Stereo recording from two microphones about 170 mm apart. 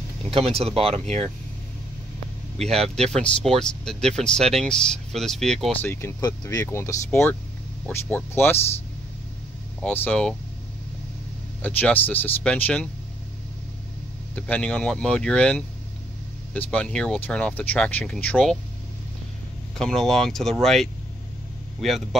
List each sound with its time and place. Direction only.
0.7 s speech: 35° right (ahead or behind)
2.6 s speech: 5° left (ahead or behind)
9.8 s speech: 5° left (ahead or behind)
11.6 s speech: 10° left (ahead or behind)
14.3 s speech: 5° left (ahead or behind)
19.8 s speech: centre (ahead or behind)